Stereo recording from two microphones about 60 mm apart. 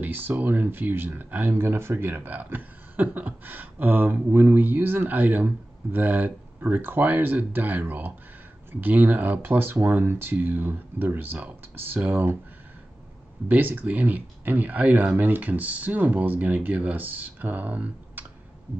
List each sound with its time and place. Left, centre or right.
0.0 s speech: right
13.5 s speech: right